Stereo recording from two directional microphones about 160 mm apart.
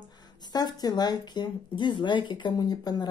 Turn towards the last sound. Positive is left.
turn(degrees=25)  # may be behind; listen again after turning